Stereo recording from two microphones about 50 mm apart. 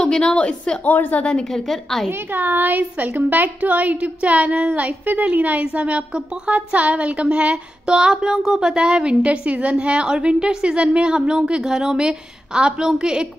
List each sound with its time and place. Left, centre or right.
0.0 s a woman's voice: centre
0.8 s a woman's voice: left
1.2 s a woman's voice: left
1.5 s a woman's voice: centre
2.0 s a woman's voice: right; by 13.3 s centre